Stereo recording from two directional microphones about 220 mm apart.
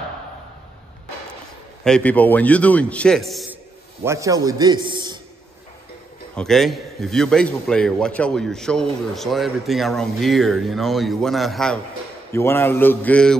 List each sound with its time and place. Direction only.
1.9 s speech: 5° left (ahead or behind)
4.0 s a man's voice: 15° right (ahead or behind)
6.3 s a man's voice: centre (ahead or behind)